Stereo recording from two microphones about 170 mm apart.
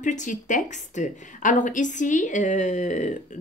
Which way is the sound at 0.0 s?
45° left (ahead or behind).